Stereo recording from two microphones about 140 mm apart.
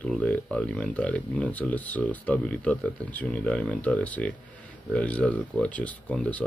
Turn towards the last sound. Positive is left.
turn(degrees=10)  # may be behind; listen again after turning